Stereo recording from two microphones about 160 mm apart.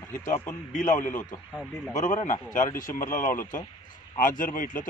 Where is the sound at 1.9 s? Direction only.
50° left (ahead or behind).